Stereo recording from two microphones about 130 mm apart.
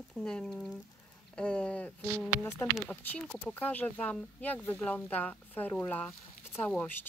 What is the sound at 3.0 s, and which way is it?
Speech, 10° left (ahead or behind).